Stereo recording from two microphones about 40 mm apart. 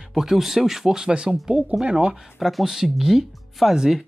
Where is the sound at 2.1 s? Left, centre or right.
Centre.